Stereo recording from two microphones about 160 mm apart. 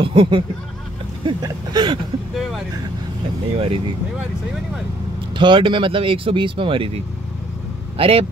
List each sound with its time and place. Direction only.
0.0 s speech: 30° right (ahead or behind)
3.5 s speech: 35° right (ahead or behind)
5.3 s speech: 30° right (ahead or behind)
8.0 s speech: 40° right (ahead or behind)